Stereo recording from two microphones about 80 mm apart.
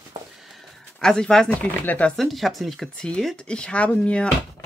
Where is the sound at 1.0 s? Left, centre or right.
Centre.